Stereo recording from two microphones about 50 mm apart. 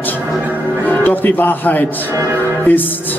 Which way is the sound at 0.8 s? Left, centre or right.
Left.